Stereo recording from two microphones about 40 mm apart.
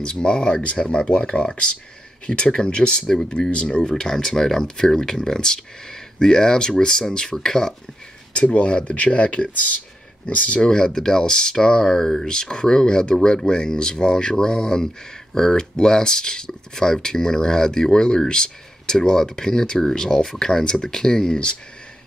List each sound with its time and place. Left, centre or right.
0.0 s speech: left
4.0 s speech: centre
8.5 s speech: left
10.6 s speech: centre